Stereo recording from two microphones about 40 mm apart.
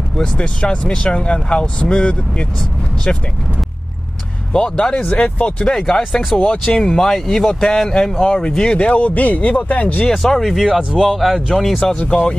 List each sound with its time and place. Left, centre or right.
0.2 s speech: left
4.5 s speech: centre
5.1 s speech: left
5.6 s speech: centre
6.3 s speech: left
6.6 s speech: centre
8.8 s speech: left
10.1 s speech: centre
12.1 s speech: left